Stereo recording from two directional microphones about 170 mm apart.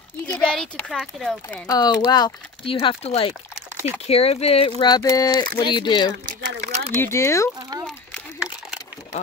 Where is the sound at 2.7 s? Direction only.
35° left (ahead or behind).